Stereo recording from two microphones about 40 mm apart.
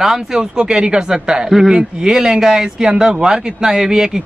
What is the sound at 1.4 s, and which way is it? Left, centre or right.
A man's voice, centre.